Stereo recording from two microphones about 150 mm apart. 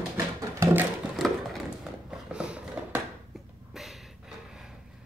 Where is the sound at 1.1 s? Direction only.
Centre (ahead or behind).